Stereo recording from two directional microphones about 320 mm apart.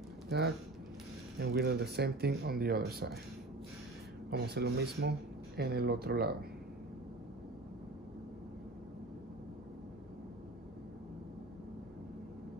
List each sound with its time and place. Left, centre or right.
1.4 s speech: right
4.3 s speech: right